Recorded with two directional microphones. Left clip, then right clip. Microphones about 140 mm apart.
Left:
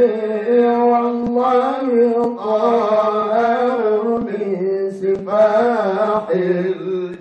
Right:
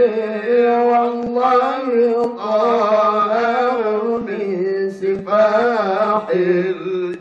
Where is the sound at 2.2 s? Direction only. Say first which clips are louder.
Even; 5° right (ahead or behind).